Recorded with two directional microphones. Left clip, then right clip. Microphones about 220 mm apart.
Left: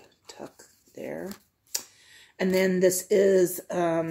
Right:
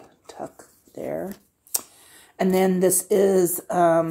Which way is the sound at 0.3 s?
10° right (ahead or behind).